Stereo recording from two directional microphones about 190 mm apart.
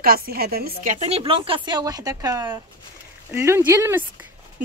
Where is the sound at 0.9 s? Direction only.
35° right (ahead or behind); by 4.0 s 15° right (ahead or behind).